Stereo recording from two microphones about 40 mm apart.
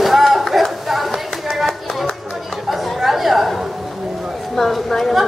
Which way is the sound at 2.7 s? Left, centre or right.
Centre.